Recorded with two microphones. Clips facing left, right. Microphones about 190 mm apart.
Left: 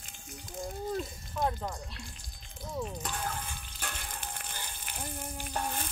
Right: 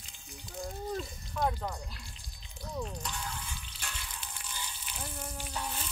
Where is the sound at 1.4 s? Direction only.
Centre (ahead or behind).